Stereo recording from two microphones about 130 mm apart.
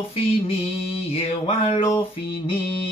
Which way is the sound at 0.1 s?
50° left (ahead or behind).